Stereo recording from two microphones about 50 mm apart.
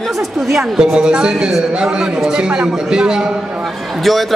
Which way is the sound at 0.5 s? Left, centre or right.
Centre.